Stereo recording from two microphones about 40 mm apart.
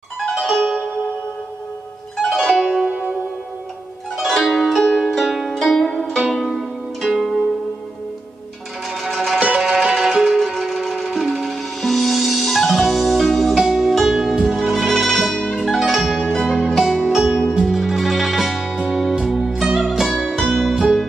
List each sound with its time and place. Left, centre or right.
0.3 s music: centre
2.1 s zither: centre
2.5 s music: centre
2.9 s music: right
4.2 s music: centre
6.5 s pizzicato: centre
9.0 s music: centre
16.1 s zither: centre
16.7 s music: centre